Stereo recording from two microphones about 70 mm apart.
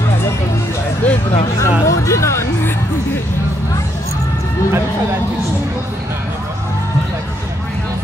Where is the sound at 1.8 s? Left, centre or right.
Left.